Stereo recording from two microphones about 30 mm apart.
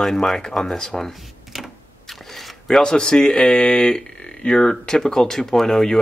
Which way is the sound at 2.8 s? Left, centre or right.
Left.